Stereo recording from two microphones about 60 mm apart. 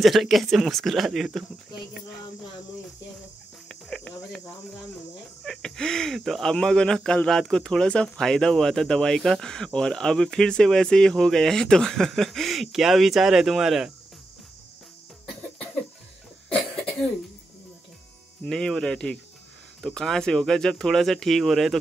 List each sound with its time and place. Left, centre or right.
0.0 s speech: centre
3.6 s cricket: centre
5.4 s speech: centre
18.5 s speech: centre